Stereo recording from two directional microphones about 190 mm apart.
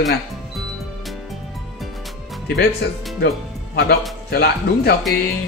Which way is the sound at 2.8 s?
60° left (ahead or behind).